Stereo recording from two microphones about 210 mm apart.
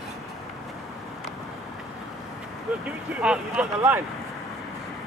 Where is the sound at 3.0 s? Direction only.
5° right (ahead or behind).